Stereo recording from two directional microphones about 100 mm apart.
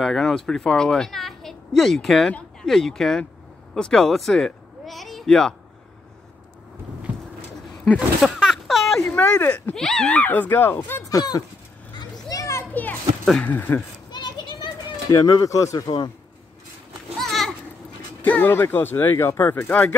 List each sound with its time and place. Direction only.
0.0 s speech: 5° left (ahead or behind)
8.2 s a sound: 5° right (ahead or behind)
9.1 s speech: 15° left (ahead or behind)
11.1 s speech: 40° left (ahead or behind)
12.0 s children playing: 35° left (ahead or behind)
13.2 s speech: 10° left (ahead or behind)
14.1 s children playing: 45° left (ahead or behind)
15.1 s speech: 35° left (ahead or behind)
17.2 s children playing: 5° left (ahead or behind)
18.2 s speech: 20° left (ahead or behind)